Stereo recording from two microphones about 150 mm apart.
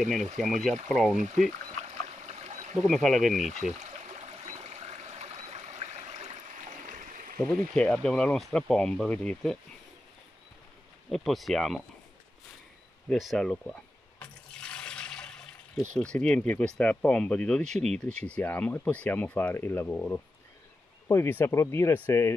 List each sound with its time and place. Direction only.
0.4 s speech: centre (ahead or behind)
1.2 s speech: 50° right (ahead or behind)
2.2 s stream: 50° right (ahead or behind)
2.9 s speech: centre (ahead or behind)
3.8 s stream: 45° right (ahead or behind); by 7.3 s 60° right (ahead or behind)
7.3 s speech: 5° left (ahead or behind)
11.1 s speech: centre (ahead or behind)
13.1 s speech: centre (ahead or behind)
14.2 s toilet flush: 10° left (ahead or behind)
15.9 s speech: 5° left (ahead or behind)